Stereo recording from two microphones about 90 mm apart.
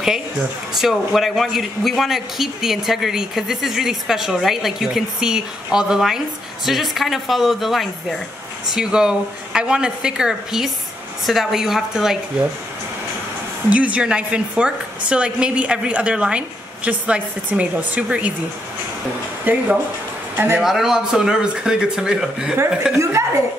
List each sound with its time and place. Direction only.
0.7 s a woman's voice: centre (ahead or behind)
13.7 s a woman's voice: 15° right (ahead or behind)
19.5 s speech: 20° right (ahead or behind)
20.6 s a woman's voice: 5° right (ahead or behind)